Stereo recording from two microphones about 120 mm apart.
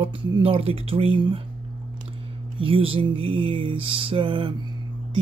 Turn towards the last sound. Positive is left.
turn(degrees=-45)  # may be behind; listen again after turning